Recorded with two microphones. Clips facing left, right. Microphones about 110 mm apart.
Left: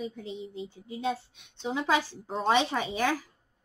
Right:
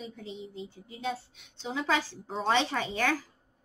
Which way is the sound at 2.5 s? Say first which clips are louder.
Left 2 dB; 15° left (ahead or behind).